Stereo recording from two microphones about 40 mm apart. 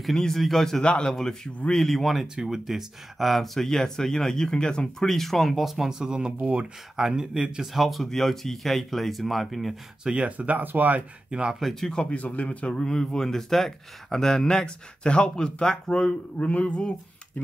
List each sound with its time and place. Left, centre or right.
0.0 s speech: centre
0.8 s speech: left
1.1 s speech: centre
2.1 s speech: centre; by 4.8 s left
4.9 s speech: centre
5.9 s speech: centre
7.3 s speech: right
7.6 s speech: centre
10.2 s speech: right
11.2 s speech: right
11.9 s speech: left
12.2 s speech: left
12.6 s speech: centre
16.4 s speech: left